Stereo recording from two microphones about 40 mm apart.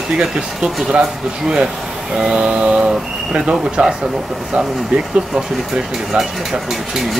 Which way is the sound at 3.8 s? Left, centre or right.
Right.